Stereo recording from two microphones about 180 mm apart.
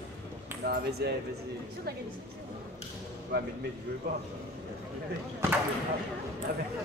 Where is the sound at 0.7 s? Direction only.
65° right (ahead or behind).